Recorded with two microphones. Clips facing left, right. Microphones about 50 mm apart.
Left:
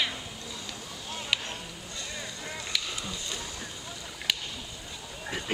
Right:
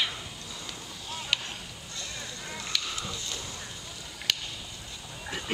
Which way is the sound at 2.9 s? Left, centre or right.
Left.